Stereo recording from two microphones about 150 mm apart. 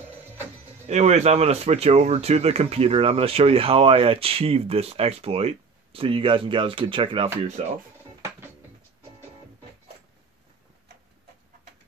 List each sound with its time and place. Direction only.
0.8 s speech: 50° right (ahead or behind)